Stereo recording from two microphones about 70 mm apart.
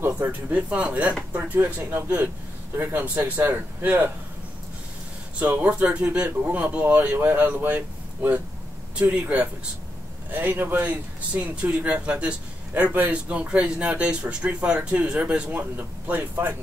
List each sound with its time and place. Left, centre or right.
0.2 s a man's voice: right
5.5 s a man's voice: right